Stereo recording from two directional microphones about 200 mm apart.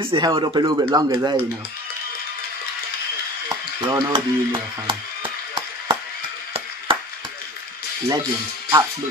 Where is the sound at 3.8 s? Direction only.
25° right (ahead or behind).